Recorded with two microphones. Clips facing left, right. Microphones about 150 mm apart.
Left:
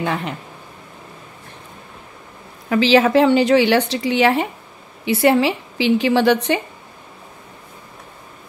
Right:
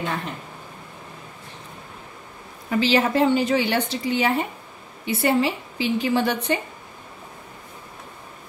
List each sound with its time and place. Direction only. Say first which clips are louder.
2.7 s a woman's voice: left 6 dB; 90° left